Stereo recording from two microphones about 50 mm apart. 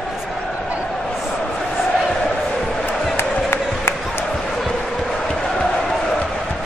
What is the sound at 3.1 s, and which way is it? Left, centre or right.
Music, left.